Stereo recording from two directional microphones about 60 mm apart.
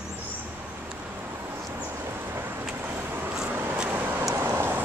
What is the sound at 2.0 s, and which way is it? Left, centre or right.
Vehicle, right.